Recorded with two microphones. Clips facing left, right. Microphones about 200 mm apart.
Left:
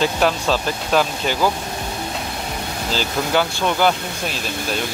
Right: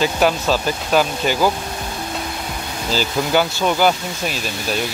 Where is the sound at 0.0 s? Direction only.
5° right (ahead or behind).